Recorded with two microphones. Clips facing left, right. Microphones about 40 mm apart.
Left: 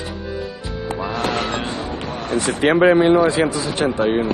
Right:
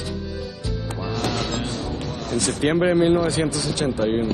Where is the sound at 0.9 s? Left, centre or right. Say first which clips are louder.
Left 4 dB; left.